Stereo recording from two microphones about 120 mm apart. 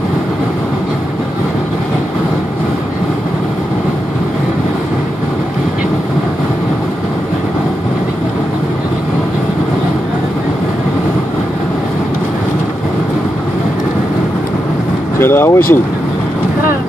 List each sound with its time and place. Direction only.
15.1 s speech: 20° left (ahead or behind)